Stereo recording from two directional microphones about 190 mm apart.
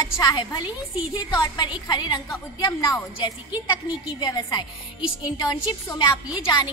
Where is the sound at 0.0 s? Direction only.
20° left (ahead or behind).